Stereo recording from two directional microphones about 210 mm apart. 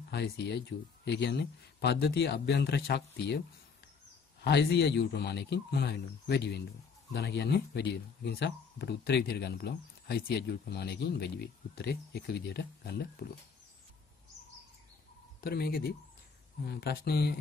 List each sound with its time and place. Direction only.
0.1 s speech: 55° left (ahead or behind)
4.5 s speech: 50° left (ahead or behind)
15.4 s speech: 50° left (ahead or behind)